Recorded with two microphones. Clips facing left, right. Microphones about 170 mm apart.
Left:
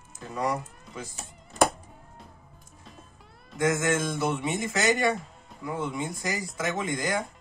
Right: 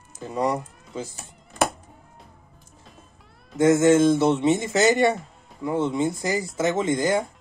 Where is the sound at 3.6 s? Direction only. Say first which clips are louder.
Right 9 dB; 25° right (ahead or behind).